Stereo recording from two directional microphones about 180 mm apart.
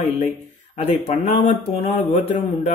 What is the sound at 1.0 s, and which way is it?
A man's voice, 45° left (ahead or behind).